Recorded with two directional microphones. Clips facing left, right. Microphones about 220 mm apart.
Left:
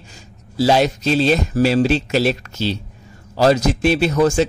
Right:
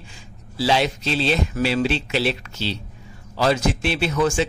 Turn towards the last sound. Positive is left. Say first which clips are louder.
# left 5 dB
turn(degrees=40)  # may be behind; listen again after turning